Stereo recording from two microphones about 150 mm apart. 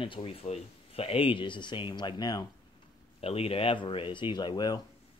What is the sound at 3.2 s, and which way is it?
Speech, 40° left (ahead or behind).